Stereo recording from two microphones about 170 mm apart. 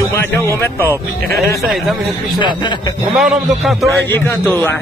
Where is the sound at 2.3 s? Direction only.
25° left (ahead or behind).